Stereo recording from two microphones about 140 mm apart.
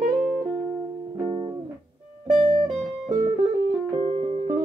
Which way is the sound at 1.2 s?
40° right (ahead or behind).